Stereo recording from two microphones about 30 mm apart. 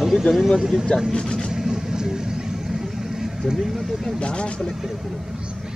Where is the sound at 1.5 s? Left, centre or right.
Centre.